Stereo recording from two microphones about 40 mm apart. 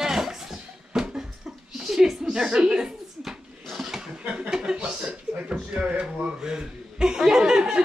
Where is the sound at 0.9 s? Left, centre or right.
Centre.